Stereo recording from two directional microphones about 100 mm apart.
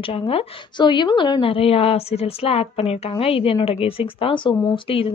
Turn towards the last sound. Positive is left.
turn(degrees=60)  # may be behind; listen again after turning